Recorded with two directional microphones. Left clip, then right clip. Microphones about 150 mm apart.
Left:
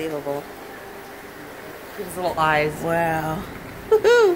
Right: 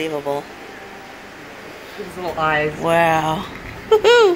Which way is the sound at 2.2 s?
35° left (ahead or behind).